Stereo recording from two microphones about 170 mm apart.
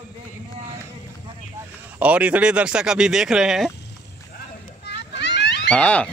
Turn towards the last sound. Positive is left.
turn(degrees=10)  # may be behind; listen again after turning